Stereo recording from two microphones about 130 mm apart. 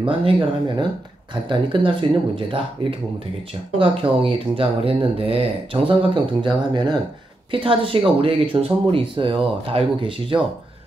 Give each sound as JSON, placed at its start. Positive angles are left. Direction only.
{"t": 0.0, "sound": "speech", "side_deg": -45}